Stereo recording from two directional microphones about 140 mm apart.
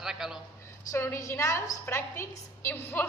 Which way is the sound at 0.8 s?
20° left (ahead or behind).